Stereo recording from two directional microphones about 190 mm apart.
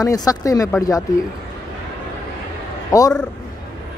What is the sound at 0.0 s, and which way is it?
Speech, 20° left (ahead or behind).